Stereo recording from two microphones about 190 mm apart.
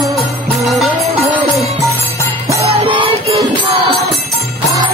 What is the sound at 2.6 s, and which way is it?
Music, 30° right (ahead or behind).